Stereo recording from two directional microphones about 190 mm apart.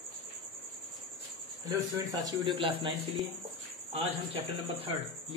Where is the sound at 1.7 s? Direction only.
20° right (ahead or behind).